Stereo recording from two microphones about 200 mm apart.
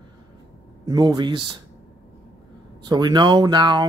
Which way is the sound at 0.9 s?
20° right (ahead or behind).